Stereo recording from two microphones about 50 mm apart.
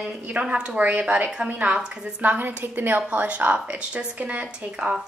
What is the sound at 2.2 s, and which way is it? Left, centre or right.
A woman's voice, right.